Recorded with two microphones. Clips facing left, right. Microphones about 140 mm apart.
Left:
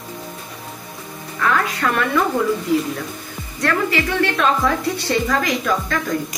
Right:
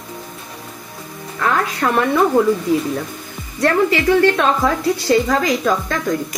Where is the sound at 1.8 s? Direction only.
35° right (ahead or behind).